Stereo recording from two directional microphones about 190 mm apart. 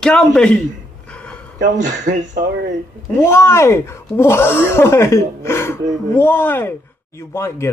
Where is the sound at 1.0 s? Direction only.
5° left (ahead or behind).